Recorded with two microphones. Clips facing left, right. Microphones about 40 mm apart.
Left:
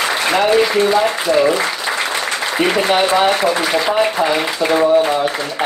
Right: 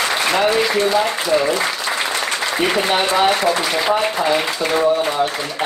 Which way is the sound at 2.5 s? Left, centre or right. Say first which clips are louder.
Left 3 dB; centre.